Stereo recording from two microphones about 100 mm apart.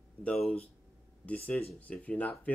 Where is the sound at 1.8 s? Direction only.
15° left (ahead or behind).